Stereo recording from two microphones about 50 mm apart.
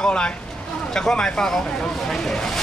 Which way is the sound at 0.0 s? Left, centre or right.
Centre.